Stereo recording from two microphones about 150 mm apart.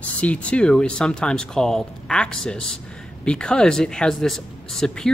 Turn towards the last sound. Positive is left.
turn(degrees=5)  # may be behind; listen again after turning